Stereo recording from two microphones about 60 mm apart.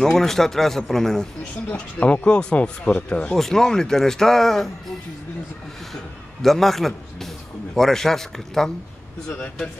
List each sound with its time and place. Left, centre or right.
0.0 s speech: centre
1.7 s speech: left
3.3 s speech: centre
6.4 s a man's voice: centre